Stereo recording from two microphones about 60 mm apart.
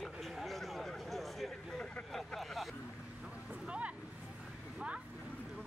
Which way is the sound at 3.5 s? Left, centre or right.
Right.